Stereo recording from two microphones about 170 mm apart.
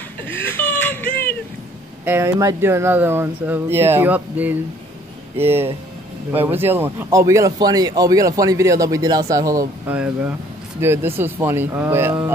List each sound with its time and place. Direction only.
0.3 s whimper: 10° left (ahead or behind)
2.0 s a man's voice: 15° right (ahead or behind)
9.9 s speech: 5° right (ahead or behind)